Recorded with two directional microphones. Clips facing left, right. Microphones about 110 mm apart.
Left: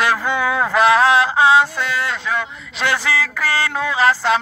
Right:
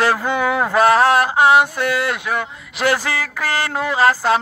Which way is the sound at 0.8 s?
45° right (ahead or behind).